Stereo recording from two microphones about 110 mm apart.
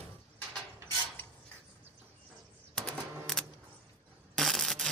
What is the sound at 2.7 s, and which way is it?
Typewriter, 5° left (ahead or behind).